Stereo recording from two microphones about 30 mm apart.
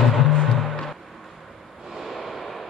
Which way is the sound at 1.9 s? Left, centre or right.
Centre.